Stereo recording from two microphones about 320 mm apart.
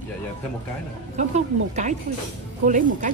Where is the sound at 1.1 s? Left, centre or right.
Right.